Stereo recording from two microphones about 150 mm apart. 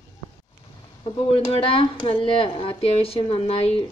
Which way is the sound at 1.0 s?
40° left (ahead or behind).